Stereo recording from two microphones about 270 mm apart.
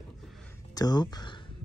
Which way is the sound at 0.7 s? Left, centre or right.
Centre.